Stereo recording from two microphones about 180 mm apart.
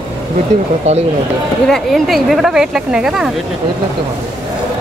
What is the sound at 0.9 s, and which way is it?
Speech, 35° right (ahead or behind).